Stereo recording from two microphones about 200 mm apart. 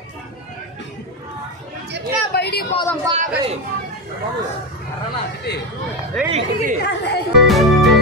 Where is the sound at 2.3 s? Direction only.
55° left (ahead or behind).